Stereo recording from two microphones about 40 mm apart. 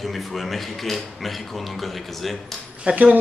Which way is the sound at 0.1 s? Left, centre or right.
Centre.